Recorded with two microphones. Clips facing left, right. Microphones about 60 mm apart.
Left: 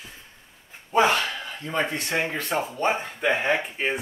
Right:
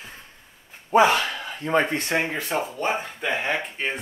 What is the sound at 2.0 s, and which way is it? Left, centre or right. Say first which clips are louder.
Speech: right 2 dB; right.